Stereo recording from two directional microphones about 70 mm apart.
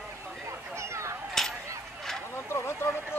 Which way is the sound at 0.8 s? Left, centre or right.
Right.